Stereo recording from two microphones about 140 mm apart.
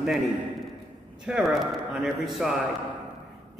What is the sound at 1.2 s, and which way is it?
A man's voice, 5° right (ahead or behind).